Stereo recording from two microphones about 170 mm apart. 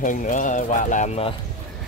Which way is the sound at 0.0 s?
50° left (ahead or behind).